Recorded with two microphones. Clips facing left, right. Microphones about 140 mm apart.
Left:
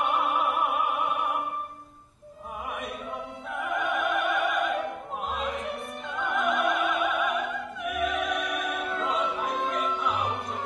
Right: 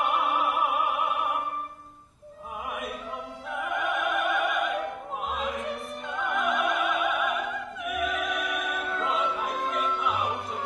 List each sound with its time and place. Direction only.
0.0 s opera: centre (ahead or behind)
2.7 s music: centre (ahead or behind)
3.5 s opera: centre (ahead or behind)